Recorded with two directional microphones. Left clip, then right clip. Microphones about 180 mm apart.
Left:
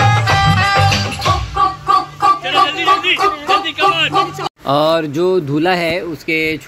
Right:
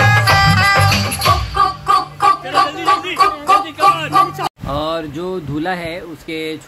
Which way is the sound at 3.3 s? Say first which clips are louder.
Right 1 dB; 35° right (ahead or behind).